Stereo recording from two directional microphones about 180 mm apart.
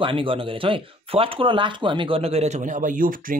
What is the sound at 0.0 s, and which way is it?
Speech, 30° right (ahead or behind).